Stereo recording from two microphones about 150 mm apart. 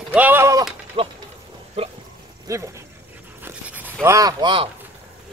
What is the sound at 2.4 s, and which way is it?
Dog, 20° right (ahead or behind).